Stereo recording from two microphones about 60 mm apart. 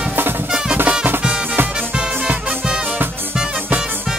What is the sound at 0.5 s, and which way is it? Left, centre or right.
Music, centre.